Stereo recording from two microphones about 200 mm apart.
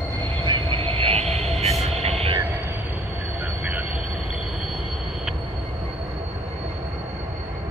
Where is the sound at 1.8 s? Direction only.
30° right (ahead or behind).